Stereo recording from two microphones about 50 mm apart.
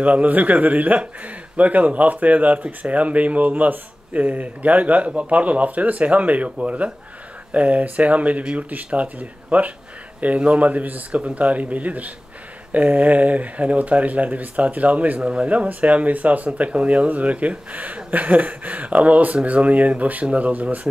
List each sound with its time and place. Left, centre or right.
0.0 s a man's voice: right